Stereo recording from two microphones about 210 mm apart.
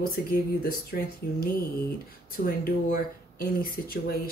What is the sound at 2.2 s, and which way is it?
Speech, 45° left (ahead or behind).